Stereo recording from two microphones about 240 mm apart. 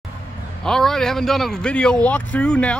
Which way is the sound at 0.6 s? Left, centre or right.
Centre.